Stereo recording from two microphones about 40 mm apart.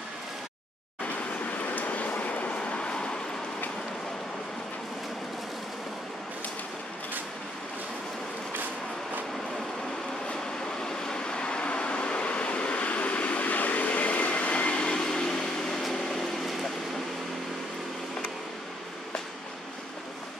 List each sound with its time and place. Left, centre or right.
1.0 s train: left
10.8 s vehicle: centre
15.0 s a sound: centre
15.9 s vehicle: centre